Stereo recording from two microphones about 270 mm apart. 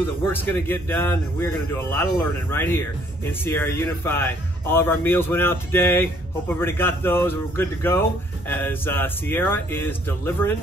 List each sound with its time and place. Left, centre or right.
0.0 s speech: centre